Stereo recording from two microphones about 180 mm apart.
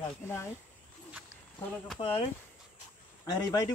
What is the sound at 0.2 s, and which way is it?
Speech, 15° left (ahead or behind).